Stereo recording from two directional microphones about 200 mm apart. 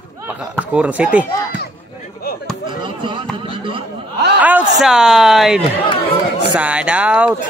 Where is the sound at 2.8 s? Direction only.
25° right (ahead or behind).